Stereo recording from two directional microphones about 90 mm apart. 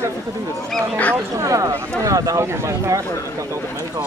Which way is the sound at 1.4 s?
35° right (ahead or behind).